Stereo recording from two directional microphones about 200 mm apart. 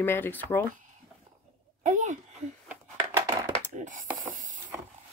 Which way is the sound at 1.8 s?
40° right (ahead or behind).